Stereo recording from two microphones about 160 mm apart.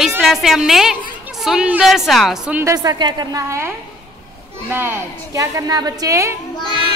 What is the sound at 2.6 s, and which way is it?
A woman's voice, 25° right (ahead or behind).